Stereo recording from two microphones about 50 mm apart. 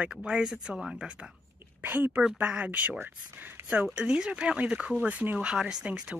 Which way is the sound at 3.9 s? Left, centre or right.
Centre.